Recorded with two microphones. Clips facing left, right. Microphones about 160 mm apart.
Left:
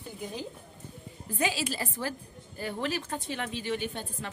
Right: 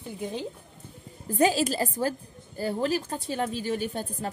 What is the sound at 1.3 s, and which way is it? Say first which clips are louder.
A woman's voice: right 8 dB; 40° right (ahead or behind).